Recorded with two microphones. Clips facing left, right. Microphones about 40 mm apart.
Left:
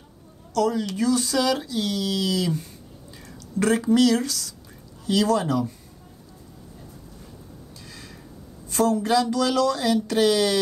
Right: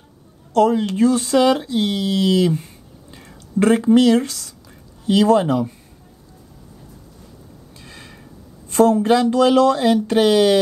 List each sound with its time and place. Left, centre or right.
0.5 s speech: right
7.7 s a sound: right
8.6 s speech: right